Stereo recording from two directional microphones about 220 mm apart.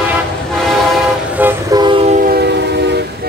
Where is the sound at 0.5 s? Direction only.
Centre (ahead or behind).